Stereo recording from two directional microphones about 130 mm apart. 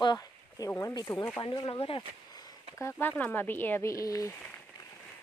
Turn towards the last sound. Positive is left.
turn(degrees=25)  # may be behind; listen again after turning